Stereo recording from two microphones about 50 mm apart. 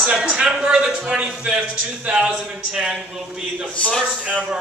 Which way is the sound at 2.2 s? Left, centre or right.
Centre.